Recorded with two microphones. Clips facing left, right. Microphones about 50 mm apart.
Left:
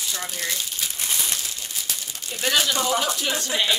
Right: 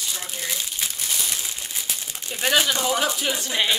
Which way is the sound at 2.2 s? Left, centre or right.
Centre.